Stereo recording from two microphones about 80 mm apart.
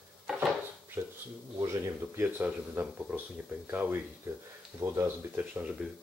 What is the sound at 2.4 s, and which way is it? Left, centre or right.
Speech, centre.